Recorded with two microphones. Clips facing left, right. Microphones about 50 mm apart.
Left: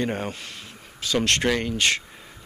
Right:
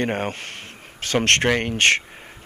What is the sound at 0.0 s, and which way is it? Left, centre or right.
Speech, right.